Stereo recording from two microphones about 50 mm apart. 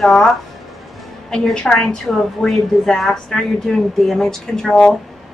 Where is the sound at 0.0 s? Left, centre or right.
Centre.